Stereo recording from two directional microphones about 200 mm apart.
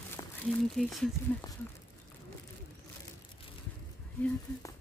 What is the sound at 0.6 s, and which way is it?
Speech, centre (ahead or behind).